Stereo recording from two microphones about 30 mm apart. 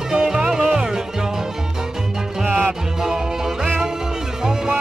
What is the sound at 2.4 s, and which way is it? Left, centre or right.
Music, right.